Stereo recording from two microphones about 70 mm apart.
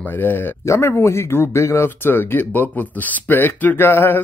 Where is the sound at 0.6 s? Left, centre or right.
Left.